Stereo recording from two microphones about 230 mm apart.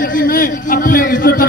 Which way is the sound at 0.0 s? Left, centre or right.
Left.